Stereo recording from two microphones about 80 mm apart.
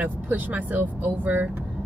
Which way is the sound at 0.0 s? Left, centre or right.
Centre.